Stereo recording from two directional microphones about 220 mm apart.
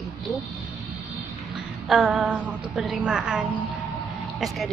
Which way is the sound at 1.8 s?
Centre (ahead or behind).